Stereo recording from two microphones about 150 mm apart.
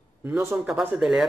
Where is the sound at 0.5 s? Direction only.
5° right (ahead or behind).